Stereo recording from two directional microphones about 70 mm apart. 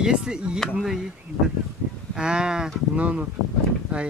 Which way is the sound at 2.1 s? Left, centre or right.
Centre.